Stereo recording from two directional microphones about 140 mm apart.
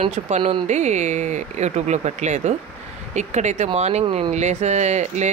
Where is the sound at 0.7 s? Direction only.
55° right (ahead or behind).